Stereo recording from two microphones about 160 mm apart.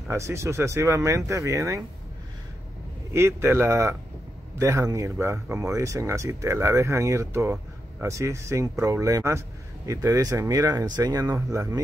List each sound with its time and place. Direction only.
0.1 s speech: 15° right (ahead or behind)
3.1 s speech: 15° right (ahead or behind)